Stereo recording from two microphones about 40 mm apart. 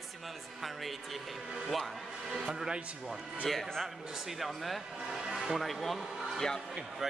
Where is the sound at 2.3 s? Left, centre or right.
Centre.